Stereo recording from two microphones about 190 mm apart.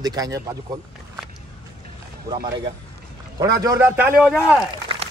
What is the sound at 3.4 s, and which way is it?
A man's voice, 15° right (ahead or behind).